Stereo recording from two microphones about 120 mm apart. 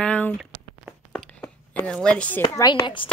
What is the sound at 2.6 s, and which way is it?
Speech, 30° left (ahead or behind).